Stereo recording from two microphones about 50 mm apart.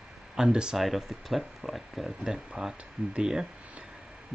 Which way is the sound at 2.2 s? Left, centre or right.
Centre.